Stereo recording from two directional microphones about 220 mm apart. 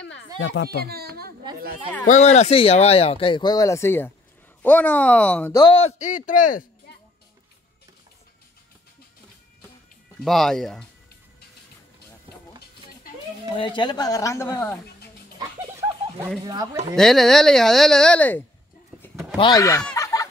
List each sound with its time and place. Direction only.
0.4 s speech: 55° left (ahead or behind)
0.8 s a sound: 45° right (ahead or behind)
2.0 s a woman's voice: 30° left (ahead or behind); by 5.6 s 5° left (ahead or behind)
5.6 s speech: 25° left (ahead or behind)
10.2 s speech: centre (ahead or behind)
13.6 s a woman's voice: 20° left (ahead or behind)
16.4 s speech: 15° right (ahead or behind)
16.9 s speech: centre (ahead or behind)
18.9 s a sound: 10° left (ahead or behind)
19.3 s speech: 20° left (ahead or behind)
20.0 s chicken: 15° left (ahead or behind)